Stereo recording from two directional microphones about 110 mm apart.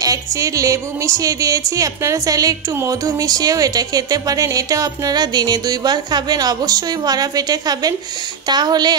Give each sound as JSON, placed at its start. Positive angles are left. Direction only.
{"t": 0.0, "sound": "speech", "side_deg": -30}